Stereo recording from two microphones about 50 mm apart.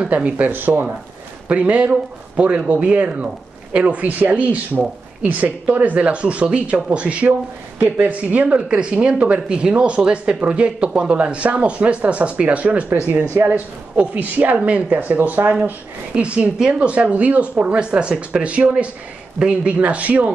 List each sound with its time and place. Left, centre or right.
0.1 s speech: right
1.5 s speech: right
7.8 s speech: right
8.2 s speech: right
16.2 s speech: right